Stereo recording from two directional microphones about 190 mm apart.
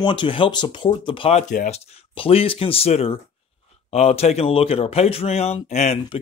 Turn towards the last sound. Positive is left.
turn(degrees=35)  # may be behind; listen again after turning